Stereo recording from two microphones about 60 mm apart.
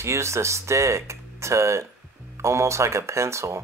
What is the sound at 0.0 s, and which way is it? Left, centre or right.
Speech, right.